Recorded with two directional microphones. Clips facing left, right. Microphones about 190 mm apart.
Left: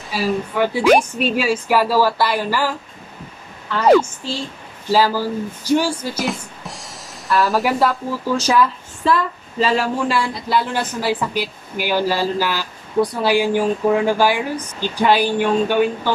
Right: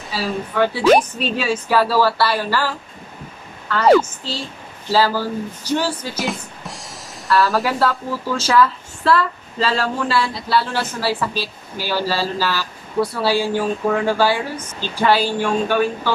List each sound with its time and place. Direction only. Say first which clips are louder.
0.1 s a woman's voice: left 3 dB; 15° left (ahead or behind)
6.1 s music: left 1 dB; centre (ahead or behind)
7.2 s speech: even; 15° left (ahead or behind)